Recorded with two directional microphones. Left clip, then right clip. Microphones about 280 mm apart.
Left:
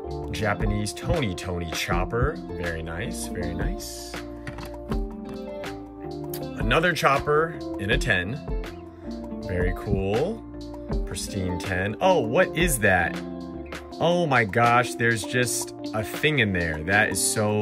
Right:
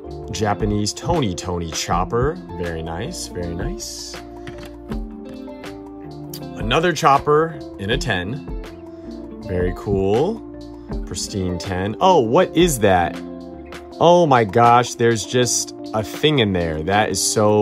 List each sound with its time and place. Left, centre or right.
0.3 s speech: centre
6.6 s speech: centre
9.5 s speech: centre
11.1 s speech: centre